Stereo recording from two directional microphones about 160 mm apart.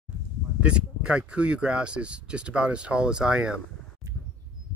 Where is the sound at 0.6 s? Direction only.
5° right (ahead or behind).